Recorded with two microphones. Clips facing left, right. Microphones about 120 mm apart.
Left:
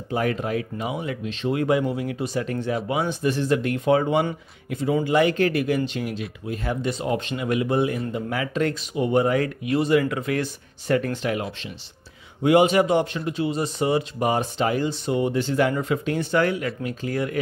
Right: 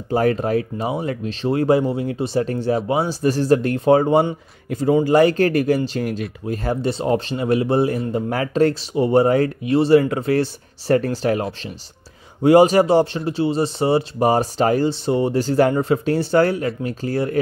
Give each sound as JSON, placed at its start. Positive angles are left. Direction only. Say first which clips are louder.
{"t": 0.1, "sound": "speech", "louder": "right 6 dB", "side_deg": -40}